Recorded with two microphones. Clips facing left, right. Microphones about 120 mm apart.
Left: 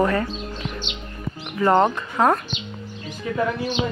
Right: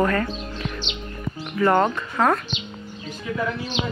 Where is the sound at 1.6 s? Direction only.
20° left (ahead or behind).